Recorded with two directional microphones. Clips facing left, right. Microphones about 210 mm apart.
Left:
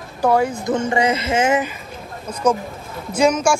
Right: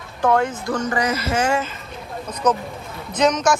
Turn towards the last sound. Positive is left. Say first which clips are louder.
# left 2 dB
turn(degrees=10)  # may be behind; listen again after turning